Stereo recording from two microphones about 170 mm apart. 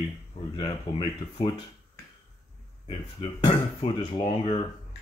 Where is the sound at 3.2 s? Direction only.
30° left (ahead or behind).